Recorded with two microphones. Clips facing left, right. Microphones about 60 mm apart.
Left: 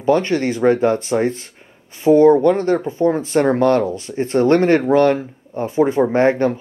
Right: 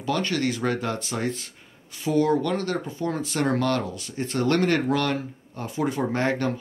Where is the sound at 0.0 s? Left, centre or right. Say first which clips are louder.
Left 9 dB; left.